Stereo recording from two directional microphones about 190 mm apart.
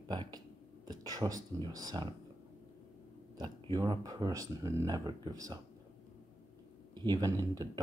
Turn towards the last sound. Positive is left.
turn(degrees=-20)  # may be behind; listen again after turning